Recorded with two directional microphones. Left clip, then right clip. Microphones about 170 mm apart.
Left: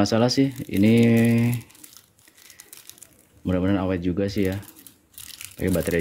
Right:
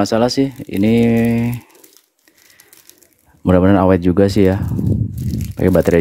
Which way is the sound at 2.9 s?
5° left (ahead or behind).